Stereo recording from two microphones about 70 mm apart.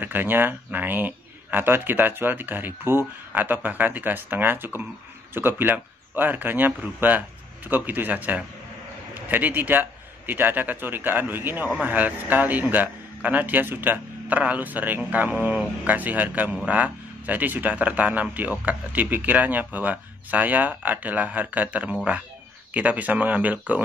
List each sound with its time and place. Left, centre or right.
0.0 s a man's voice: right